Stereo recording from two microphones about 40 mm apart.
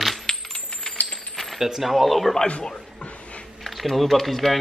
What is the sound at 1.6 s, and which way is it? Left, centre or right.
Speech, centre.